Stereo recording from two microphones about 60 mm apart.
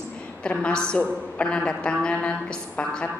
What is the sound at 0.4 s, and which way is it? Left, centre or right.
Speech, centre.